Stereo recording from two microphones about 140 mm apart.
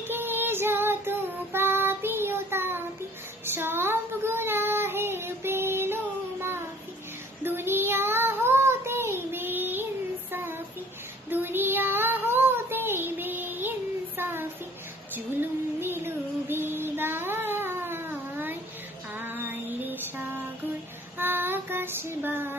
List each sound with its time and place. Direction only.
0.1 s female singing: 15° right (ahead or behind)
3.4 s child singing: 15° right (ahead or behind)
7.4 s child singing: 15° right (ahead or behind)
15.8 s child singing: 15° right (ahead or behind)
19.1 s music: 15° right (ahead or behind)
21.2 s child singing: 15° right (ahead or behind)